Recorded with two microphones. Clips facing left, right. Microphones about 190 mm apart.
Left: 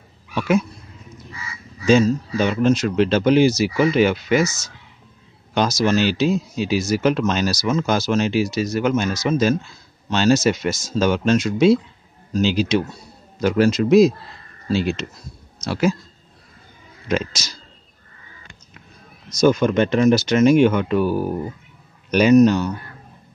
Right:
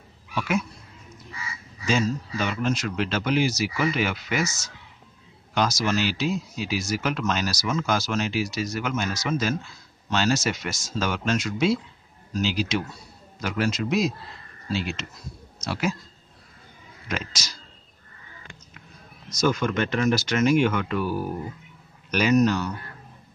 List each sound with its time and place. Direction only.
0.3 s a sound: 30° left (ahead or behind)
1.9 s speech: 25° left (ahead or behind)
17.1 s speech: 25° left (ahead or behind)
19.4 s speech: 20° left (ahead or behind)